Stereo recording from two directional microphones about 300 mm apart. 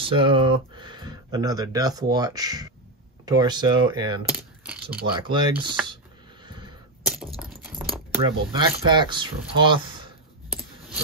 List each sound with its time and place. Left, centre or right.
0.0 s speech: centre
4.3 s typing: centre
5.3 s speech: centre
6.4 s a sound: centre
8.5 s speech: centre